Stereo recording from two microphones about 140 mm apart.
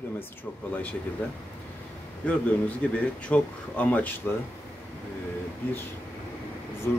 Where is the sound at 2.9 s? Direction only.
10° left (ahead or behind).